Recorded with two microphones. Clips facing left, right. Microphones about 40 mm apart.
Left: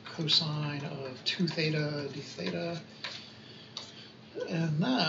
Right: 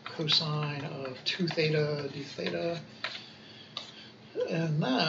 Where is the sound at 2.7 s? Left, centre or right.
Right.